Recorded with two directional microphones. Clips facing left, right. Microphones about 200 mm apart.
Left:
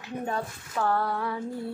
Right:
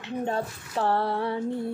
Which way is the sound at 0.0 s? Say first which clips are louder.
Right 3 dB; 25° right (ahead or behind).